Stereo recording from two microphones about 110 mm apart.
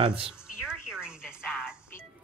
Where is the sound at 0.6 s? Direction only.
5° right (ahead or behind).